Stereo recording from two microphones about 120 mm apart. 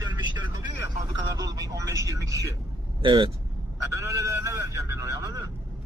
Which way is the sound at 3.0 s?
45° right (ahead or behind).